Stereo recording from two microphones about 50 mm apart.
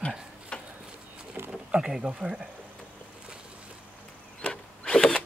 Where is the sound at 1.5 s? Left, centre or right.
Centre.